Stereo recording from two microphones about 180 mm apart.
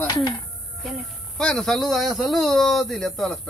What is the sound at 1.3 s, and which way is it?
Speech, 5° left (ahead or behind).